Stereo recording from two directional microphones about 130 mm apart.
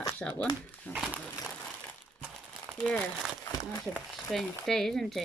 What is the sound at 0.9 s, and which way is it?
Speech, 15° left (ahead or behind).